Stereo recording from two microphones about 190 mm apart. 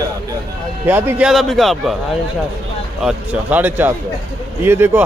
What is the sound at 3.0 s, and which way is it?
A man's voice, 10° right (ahead or behind).